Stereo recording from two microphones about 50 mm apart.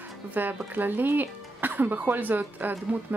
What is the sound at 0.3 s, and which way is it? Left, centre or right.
Speech, right.